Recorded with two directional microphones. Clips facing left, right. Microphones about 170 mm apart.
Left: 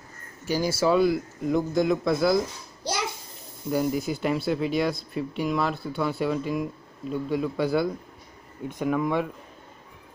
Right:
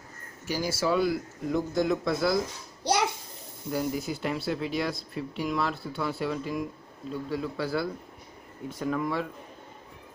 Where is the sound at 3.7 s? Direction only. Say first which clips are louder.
Left 4 dB; 20° left (ahead or behind).